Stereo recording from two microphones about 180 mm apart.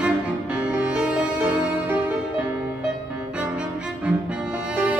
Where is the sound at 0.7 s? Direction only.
5° right (ahead or behind).